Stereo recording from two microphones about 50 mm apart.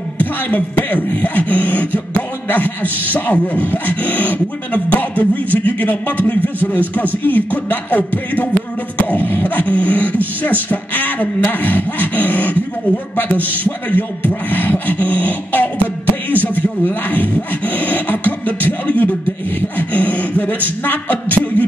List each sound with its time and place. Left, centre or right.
0.2 s speech: left